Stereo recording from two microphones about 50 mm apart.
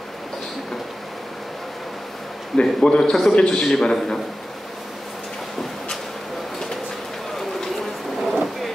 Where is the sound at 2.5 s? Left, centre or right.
Centre.